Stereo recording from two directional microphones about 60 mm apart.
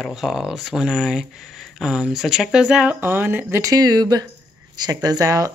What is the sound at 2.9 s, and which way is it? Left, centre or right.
Speech, right.